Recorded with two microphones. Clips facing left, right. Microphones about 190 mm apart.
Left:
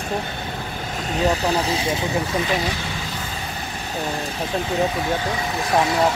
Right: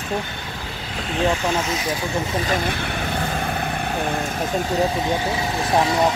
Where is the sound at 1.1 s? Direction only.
40° left (ahead or behind).